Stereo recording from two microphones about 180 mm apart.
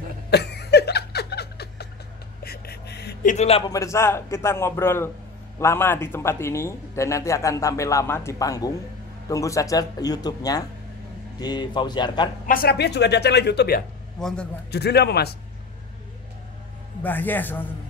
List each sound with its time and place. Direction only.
0.3 s chuckle: 65° left (ahead or behind)
2.4 s a sound: 60° left (ahead or behind)
3.3 s a man's voice: 35° left (ahead or behind)
3.6 s a man's voice: 20° left (ahead or behind)
12.4 s a woman's voice: 55° left (ahead or behind)
14.2 s a man's voice: 5° left (ahead or behind)
14.7 s a man's voice: 65° left (ahead or behind)
17.0 s a man's voice: 10° left (ahead or behind)